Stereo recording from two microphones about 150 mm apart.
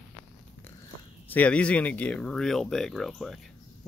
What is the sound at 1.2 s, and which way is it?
Speech, 10° left (ahead or behind).